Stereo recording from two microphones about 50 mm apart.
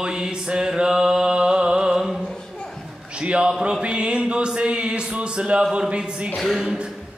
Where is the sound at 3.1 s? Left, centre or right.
Right.